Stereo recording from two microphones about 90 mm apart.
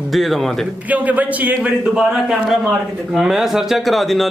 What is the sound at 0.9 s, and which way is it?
A man's voice, 20° right (ahead or behind).